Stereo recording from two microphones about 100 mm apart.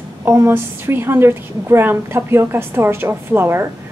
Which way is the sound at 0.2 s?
25° right (ahead or behind).